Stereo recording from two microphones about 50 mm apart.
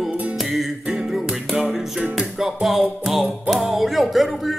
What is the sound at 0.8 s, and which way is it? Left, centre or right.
Music, right.